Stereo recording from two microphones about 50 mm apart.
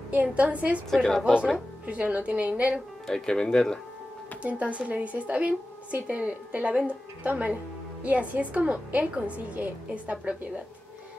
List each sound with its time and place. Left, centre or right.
0.1 s speech: right
0.9 s speech: centre
1.9 s speech: right
3.1 s speech: centre
4.4 s a woman's voice: right